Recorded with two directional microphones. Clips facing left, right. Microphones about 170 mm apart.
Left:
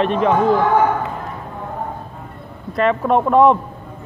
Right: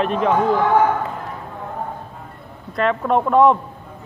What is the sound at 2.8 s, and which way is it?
Speech, centre (ahead or behind).